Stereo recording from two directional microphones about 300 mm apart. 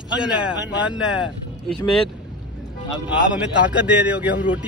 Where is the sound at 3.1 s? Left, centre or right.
Centre.